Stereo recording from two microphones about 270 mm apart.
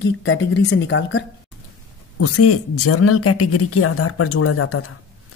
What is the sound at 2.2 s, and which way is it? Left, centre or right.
A woman's voice, left.